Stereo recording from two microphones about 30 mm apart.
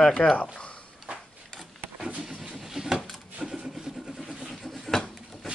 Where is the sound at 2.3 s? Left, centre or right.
Right.